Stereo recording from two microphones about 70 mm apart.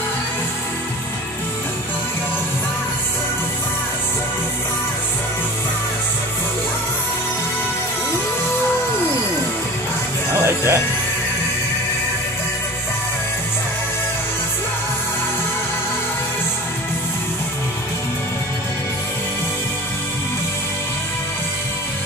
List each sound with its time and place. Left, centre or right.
10.4 s music: right